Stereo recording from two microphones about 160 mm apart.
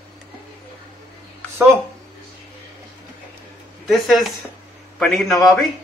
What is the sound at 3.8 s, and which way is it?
A man's voice, centre (ahead or behind).